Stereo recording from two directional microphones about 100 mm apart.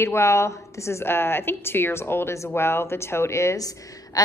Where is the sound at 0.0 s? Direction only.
25° left (ahead or behind).